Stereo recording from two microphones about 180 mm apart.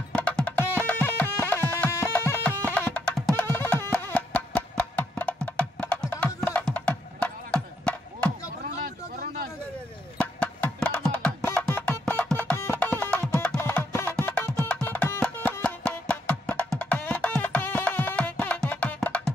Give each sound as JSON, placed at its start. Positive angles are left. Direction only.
{"t": 0.1, "sound": "music", "side_deg": 5}
{"t": 8.6, "sound": "vehicle", "side_deg": -50}
{"t": 10.1, "sound": "music", "side_deg": 5}